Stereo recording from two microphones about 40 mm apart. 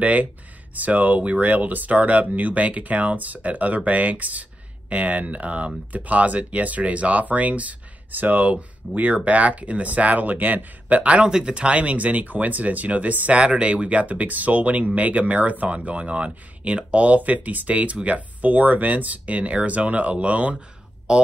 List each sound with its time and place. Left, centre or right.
0.0 s speech: right
11.2 s speech: right
13.4 s speech: right
21.1 s speech: right